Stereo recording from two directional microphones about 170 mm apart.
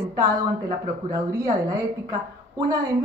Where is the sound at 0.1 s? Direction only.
20° right (ahead or behind).